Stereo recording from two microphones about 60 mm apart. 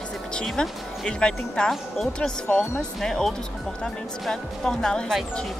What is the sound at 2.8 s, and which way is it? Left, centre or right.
Speech, centre.